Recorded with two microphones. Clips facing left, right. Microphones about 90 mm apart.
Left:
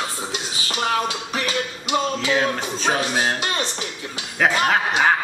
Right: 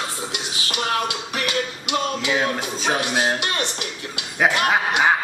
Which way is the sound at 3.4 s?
30° left (ahead or behind).